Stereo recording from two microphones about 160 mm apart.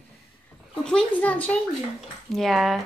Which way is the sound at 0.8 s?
5° left (ahead or behind).